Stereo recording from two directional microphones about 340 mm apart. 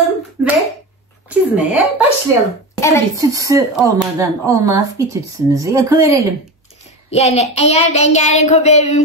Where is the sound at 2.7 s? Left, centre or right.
Centre.